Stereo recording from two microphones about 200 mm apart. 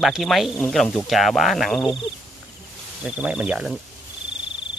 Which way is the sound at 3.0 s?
5° right (ahead or behind).